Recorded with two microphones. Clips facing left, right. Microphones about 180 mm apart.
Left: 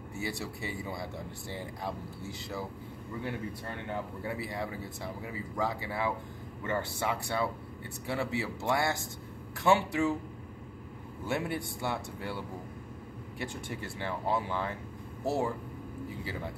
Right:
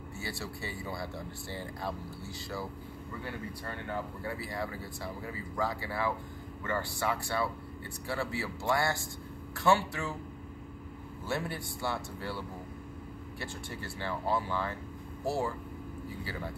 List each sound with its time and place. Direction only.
0.2 s speech: 20° left (ahead or behind)
4.2 s speech: 20° left (ahead or behind)
11.2 s speech: 20° left (ahead or behind)